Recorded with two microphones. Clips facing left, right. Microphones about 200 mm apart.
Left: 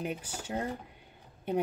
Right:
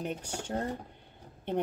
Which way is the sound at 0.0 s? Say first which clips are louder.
Right 1 dB; 5° left (ahead or behind).